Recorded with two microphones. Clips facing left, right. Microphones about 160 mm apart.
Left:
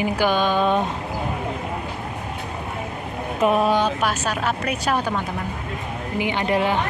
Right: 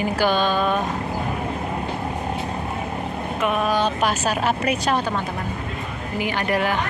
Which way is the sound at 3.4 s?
30° left (ahead or behind).